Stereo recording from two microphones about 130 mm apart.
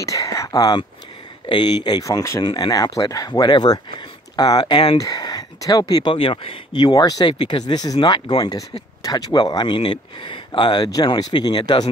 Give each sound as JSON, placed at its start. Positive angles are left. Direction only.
{"t": 0.0, "sound": "speech", "side_deg": 25}
{"t": 9.0, "sound": "speech", "side_deg": 30}